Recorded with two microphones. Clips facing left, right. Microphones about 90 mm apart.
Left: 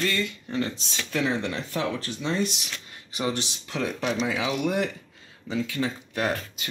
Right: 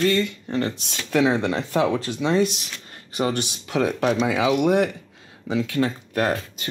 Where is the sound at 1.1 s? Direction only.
85° right.